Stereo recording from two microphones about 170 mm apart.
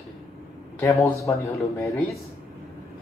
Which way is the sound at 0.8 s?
20° left (ahead or behind).